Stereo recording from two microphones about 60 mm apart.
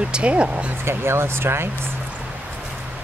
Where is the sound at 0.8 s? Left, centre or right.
Right.